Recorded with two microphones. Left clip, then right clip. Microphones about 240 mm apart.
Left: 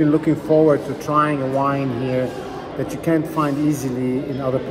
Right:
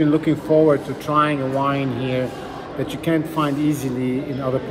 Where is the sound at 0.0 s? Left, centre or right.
Centre.